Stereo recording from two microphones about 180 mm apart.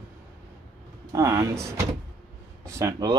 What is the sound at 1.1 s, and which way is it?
Speech, 15° right (ahead or behind).